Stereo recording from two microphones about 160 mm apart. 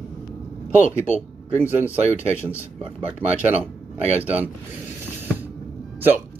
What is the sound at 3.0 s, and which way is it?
Speech, 10° right (ahead or behind).